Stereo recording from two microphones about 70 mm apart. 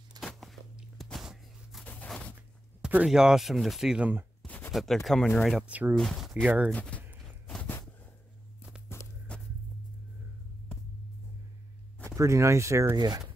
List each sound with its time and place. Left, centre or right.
0.2 s a sound: centre
1.1 s walk: centre
3.1 s speech: centre
4.0 s speech: right
4.7 s speech: centre
5.6 s speech: right
5.9 s speech: centre
6.4 s speech: centre
6.7 s speech: centre
8.9 s walk: left
9.3 s a sound: centre
12.2 s speech: right
12.9 s speech: right